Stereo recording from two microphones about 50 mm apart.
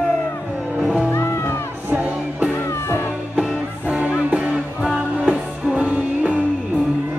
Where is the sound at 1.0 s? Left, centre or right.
Left.